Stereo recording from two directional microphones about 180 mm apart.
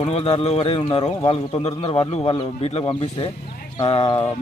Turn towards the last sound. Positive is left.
turn(degrees=30)  # may be behind; listen again after turning